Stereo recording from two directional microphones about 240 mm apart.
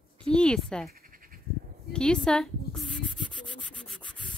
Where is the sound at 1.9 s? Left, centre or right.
Centre.